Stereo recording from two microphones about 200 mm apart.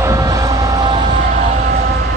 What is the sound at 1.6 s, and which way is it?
Vehicle, 50° right (ahead or behind).